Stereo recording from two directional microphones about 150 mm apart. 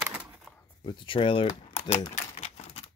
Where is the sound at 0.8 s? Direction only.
35° left (ahead or behind).